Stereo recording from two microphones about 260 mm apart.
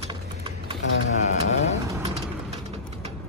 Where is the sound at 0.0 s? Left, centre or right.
Right.